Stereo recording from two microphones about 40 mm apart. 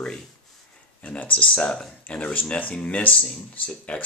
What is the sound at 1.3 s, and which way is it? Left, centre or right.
Speech, left.